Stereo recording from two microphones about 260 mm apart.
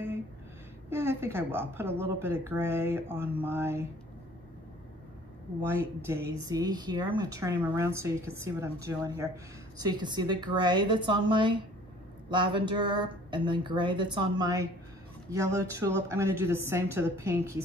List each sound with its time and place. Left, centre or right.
0.8 s a woman's voice: centre
5.6 s a woman's voice: centre